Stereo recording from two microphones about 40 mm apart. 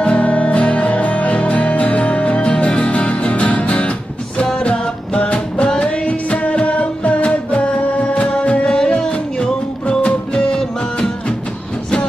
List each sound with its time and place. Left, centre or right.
0.0 s music: left